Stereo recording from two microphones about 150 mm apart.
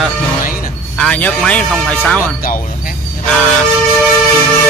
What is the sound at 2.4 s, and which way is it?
Speech, 70° left (ahead or behind).